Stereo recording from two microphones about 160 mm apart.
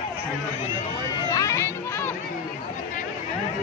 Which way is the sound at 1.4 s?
20° left (ahead or behind).